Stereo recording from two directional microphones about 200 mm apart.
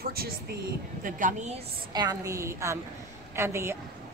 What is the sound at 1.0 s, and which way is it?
Speech, 35° right (ahead or behind).